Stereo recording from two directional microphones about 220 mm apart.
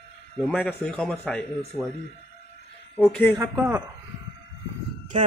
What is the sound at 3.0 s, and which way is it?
Speech, 5° left (ahead or behind).